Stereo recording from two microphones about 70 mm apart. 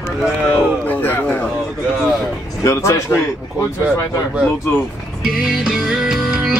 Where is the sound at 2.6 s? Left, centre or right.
Left.